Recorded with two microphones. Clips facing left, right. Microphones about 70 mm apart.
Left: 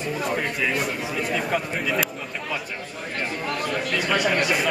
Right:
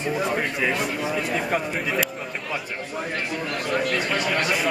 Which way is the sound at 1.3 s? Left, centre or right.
Centre.